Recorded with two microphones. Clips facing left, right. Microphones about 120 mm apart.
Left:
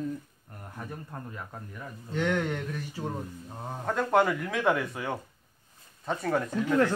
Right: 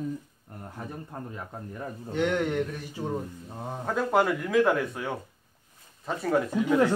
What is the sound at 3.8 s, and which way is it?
Speech, centre (ahead or behind).